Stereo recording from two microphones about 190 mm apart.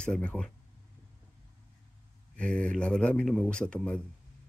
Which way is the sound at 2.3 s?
5° left (ahead or behind).